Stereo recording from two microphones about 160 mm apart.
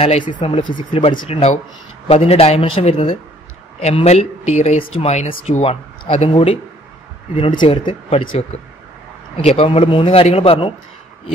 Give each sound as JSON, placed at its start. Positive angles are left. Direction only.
{"t": 0.0, "sound": "speech", "side_deg": 35}